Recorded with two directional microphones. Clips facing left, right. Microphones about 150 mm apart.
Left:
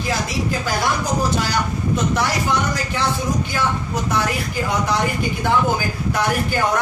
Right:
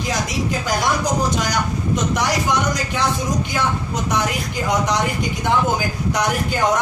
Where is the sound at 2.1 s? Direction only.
15° right (ahead or behind).